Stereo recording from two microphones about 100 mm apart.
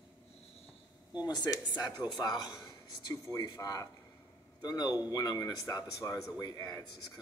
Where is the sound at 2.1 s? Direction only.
45° left (ahead or behind).